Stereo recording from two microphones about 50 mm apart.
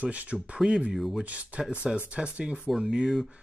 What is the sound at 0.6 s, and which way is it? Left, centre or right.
Speech, centre.